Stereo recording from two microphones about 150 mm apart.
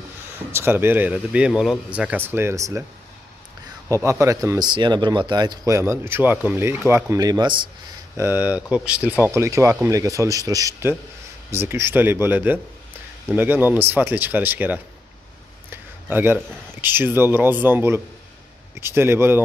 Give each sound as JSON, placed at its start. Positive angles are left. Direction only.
{"t": 0.5, "sound": "speech", "side_deg": -15}
{"t": 3.9, "sound": "speech", "side_deg": -20}
{"t": 8.2, "sound": "speech", "side_deg": -15}
{"t": 15.7, "sound": "a sound", "side_deg": -15}
{"t": 16.8, "sound": "speech", "side_deg": -15}